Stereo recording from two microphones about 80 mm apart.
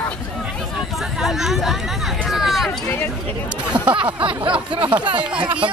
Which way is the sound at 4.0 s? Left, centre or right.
Right.